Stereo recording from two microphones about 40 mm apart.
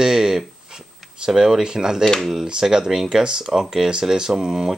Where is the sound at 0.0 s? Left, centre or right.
Centre.